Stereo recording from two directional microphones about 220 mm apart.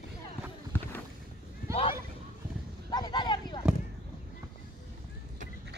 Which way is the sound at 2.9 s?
20° left (ahead or behind).